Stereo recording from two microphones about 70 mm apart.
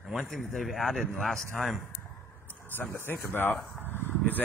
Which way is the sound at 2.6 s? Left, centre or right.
Left.